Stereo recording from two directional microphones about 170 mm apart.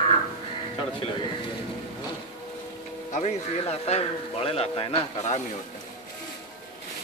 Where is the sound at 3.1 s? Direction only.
40° left (ahead or behind).